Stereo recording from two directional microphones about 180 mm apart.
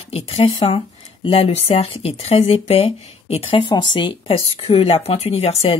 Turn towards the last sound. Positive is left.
turn(degrees=35)  # may be behind; listen again after turning